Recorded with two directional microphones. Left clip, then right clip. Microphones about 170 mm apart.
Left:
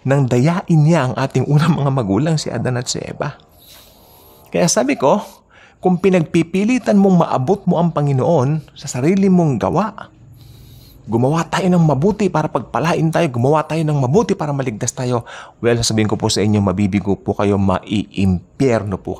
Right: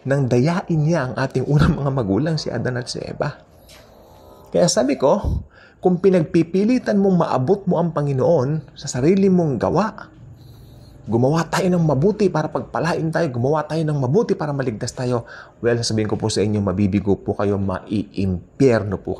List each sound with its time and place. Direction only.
0.3 s speech: 15° left (ahead or behind)
4.5 s speech: 20° left (ahead or behind)
9.3 s speech: 35° left (ahead or behind)
9.6 s speech: 15° left (ahead or behind)
11.1 s speech: 25° left (ahead or behind)
15.2 s speech: 30° left (ahead or behind)